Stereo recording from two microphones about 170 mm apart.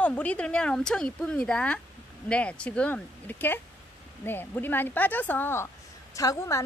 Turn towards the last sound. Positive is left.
turn(degrees=20)  # may be behind; listen again after turning